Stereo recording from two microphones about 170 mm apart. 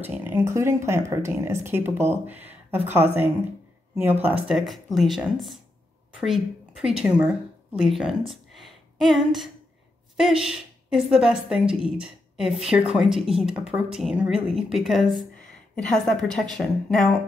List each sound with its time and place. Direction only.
0.0 s speech: 10° right (ahead or behind)
4.5 s a woman's voice: centre (ahead or behind)
8.3 s a sound: centre (ahead or behind)
10.1 s a woman's voice: 5° right (ahead or behind)